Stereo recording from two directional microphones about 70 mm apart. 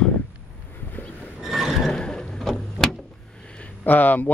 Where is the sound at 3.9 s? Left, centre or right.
Left.